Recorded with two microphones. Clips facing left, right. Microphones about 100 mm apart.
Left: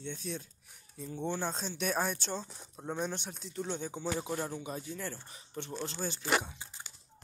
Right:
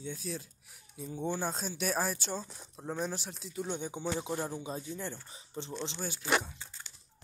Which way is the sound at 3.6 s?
15° right (ahead or behind).